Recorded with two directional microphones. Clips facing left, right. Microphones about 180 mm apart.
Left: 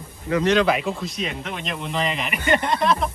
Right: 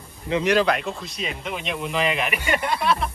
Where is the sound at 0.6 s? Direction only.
Centre (ahead or behind).